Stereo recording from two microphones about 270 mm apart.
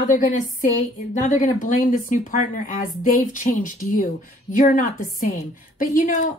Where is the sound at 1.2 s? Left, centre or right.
Left.